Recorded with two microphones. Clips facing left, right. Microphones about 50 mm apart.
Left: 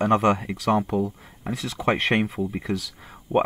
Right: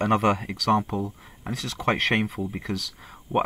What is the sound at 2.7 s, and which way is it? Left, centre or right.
Speech, left.